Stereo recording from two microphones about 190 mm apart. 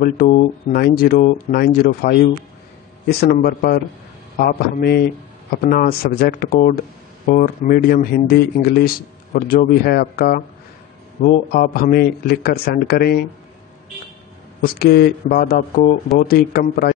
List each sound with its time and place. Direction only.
0.0 s a man's voice: 50° left (ahead or behind)
14.6 s speech: 50° left (ahead or behind)